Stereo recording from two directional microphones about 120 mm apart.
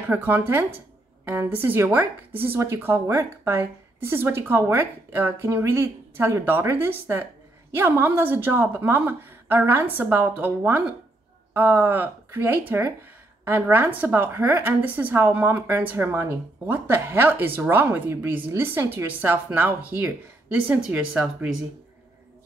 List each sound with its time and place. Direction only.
0.1 s a woman's voice: 15° right (ahead or behind)